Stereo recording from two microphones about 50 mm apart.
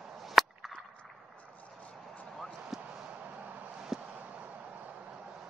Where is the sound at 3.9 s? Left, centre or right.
Centre.